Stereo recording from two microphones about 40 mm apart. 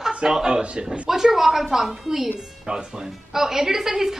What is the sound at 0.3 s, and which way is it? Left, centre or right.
Speech, centre.